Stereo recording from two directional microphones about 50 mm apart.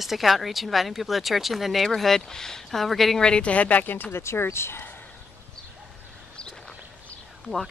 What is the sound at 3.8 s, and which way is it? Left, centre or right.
Speech, left.